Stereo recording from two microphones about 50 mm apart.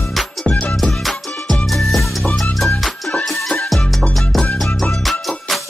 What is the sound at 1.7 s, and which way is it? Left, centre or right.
Music, centre.